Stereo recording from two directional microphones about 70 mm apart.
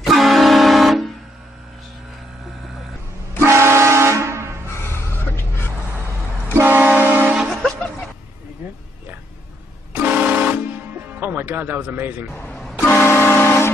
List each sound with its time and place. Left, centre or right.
0.0 s vehicle horn: centre
3.3 s vehicle horn: right
4.8 s a sound: left
6.6 s train: right
10.0 s vehicle horn: right
11.1 s speech: right
12.8 s vehicle: left